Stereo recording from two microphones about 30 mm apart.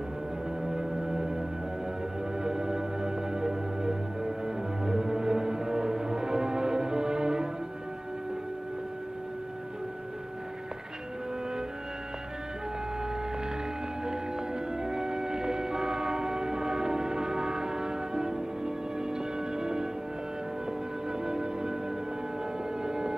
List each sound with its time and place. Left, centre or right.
0.7 s music: right
2.4 s music: right
14.0 s music: right
21.2 s music: right
22.8 s music: right